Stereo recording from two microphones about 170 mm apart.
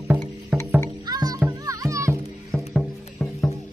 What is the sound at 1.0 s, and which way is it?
Music, 20° right (ahead or behind).